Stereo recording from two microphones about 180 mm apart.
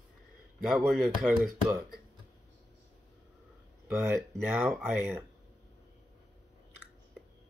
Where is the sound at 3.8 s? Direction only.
Centre (ahead or behind).